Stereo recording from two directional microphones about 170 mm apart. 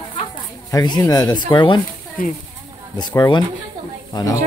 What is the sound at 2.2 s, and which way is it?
Speech, 55° left (ahead or behind).